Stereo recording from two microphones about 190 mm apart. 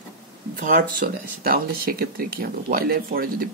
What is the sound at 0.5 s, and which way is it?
Speech, 45° right (ahead or behind).